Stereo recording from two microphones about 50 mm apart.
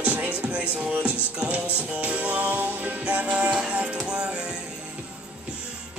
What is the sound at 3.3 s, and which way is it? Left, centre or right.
Music, centre.